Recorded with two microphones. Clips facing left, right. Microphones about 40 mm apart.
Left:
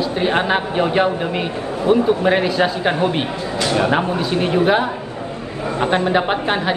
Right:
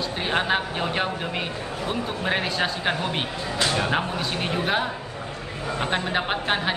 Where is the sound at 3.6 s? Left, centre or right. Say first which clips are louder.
Left 6 dB; left.